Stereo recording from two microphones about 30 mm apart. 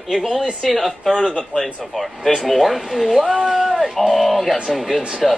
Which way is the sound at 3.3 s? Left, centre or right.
Right.